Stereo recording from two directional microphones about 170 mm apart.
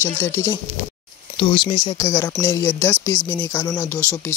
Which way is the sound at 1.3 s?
30° left (ahead or behind).